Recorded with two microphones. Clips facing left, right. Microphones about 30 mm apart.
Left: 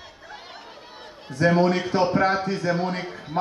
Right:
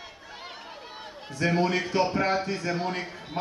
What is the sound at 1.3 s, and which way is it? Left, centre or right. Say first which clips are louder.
A man's voice: left 5 dB; left.